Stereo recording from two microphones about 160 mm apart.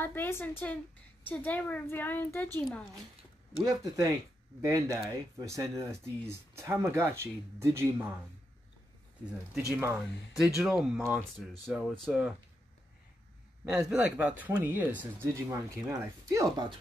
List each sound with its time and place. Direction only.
0.0 s a woman's voice: 15° left (ahead or behind)
3.6 s speech: 20° right (ahead or behind)
10.3 s speech: 5° right (ahead or behind)
13.7 s speech: 5° right (ahead or behind); by 16.7 s 25° right (ahead or behind)